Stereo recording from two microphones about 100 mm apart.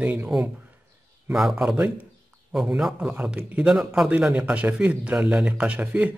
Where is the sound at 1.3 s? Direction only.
5° right (ahead or behind).